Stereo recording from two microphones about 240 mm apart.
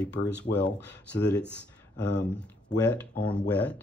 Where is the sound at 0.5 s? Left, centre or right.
Left.